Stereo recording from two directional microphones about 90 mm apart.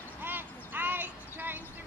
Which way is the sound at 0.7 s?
20° right (ahead or behind).